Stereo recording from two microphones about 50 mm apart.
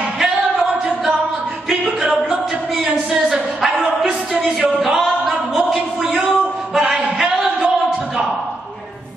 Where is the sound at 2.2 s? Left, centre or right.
Centre.